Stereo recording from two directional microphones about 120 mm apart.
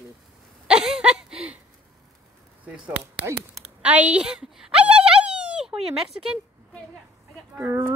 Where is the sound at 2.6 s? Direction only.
10° right (ahead or behind).